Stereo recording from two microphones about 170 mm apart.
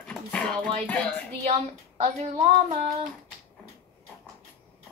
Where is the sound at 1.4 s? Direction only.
40° right (ahead or behind).